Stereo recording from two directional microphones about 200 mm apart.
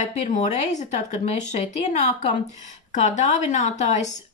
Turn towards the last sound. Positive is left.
turn(degrees=35)  # may be behind; listen again after turning